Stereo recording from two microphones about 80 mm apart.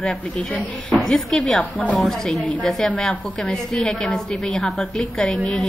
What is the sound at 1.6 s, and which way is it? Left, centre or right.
Speech, centre.